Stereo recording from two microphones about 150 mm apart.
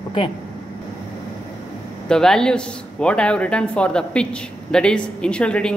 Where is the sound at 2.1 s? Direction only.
5° left (ahead or behind).